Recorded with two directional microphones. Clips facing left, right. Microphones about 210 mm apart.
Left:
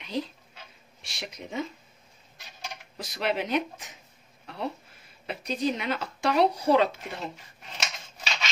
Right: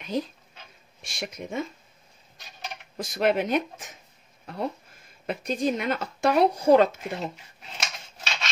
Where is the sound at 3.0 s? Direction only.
50° right (ahead or behind).